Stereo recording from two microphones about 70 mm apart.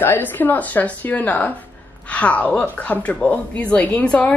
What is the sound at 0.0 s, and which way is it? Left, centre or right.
A woman's voice, left.